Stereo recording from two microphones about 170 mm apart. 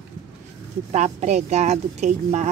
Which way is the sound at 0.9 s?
40° right (ahead or behind).